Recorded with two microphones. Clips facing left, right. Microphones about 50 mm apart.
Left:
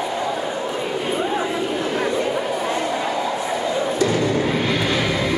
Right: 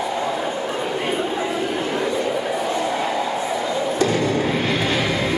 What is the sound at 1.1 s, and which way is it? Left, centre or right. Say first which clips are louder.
Chatter: left 1 dB; centre.